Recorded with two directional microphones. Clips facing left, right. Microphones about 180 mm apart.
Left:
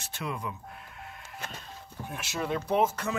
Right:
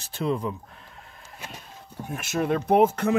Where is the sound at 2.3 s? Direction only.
50° right (ahead or behind).